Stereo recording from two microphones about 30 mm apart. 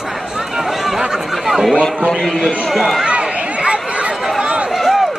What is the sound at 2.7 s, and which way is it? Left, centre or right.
Speech, centre.